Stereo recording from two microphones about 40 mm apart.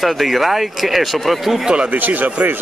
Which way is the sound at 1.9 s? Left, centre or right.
Right.